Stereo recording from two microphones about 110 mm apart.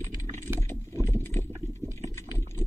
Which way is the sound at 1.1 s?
20° left (ahead or behind).